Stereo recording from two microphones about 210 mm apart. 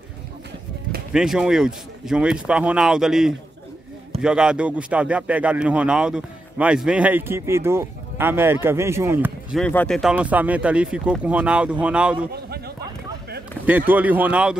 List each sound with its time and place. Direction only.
1.1 s speech: centre (ahead or behind)
9.6 s speech: 5° left (ahead or behind)
12.4 s a sound: 50° right (ahead or behind)
13.7 s speech: 10° right (ahead or behind)